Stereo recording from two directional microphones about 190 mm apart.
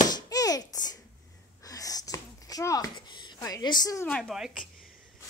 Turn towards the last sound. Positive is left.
turn(degrees=0)  # may be behind; listen again after turning